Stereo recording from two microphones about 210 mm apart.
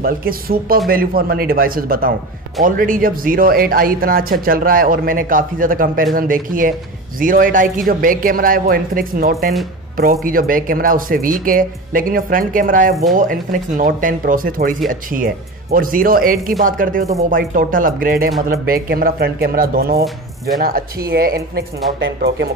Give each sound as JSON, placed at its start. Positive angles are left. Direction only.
{"t": 0.0, "sound": "speech", "side_deg": -45}